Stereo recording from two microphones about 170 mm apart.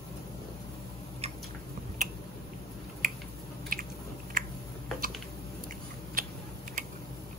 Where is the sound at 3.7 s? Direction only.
55° right (ahead or behind).